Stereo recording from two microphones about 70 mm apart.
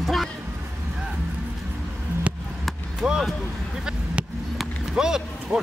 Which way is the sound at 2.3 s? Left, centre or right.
Centre.